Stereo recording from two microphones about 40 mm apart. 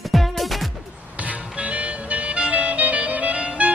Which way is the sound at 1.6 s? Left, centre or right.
Right.